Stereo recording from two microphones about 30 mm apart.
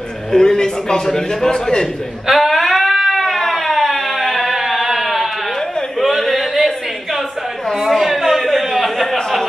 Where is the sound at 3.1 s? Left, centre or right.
Centre.